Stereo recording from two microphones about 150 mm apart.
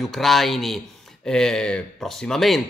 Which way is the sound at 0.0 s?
Centre (ahead or behind).